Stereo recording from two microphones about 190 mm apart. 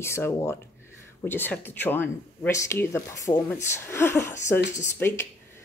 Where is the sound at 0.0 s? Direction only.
15° left (ahead or behind).